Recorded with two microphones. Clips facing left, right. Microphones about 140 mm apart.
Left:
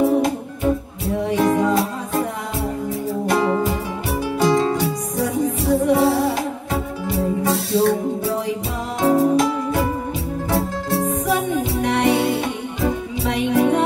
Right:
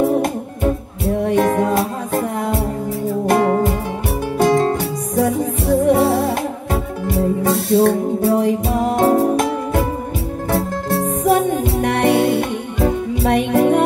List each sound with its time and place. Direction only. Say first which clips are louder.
1.0 s music: right 3 dB; 55° right (ahead or behind)
3.3 s music: right 4 dB; 50° right (ahead or behind)